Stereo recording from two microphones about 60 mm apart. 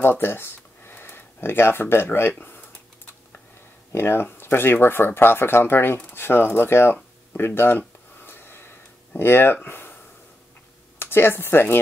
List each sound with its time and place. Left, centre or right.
0.0 s speech: left
2.3 s a sound: left
3.9 s speech: left
6.0 s a sound: left
9.1 s speech: left
11.0 s speech: left